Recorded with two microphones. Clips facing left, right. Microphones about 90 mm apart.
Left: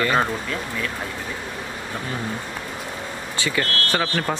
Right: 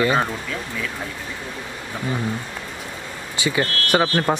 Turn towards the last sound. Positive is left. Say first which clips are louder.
# right 4 dB
turn(degrees=-20)  # may be behind; listen again after turning